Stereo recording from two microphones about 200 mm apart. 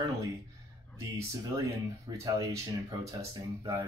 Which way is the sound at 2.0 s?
20° right (ahead or behind).